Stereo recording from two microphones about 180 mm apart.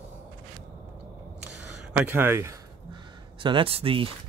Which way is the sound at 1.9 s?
10° right (ahead or behind).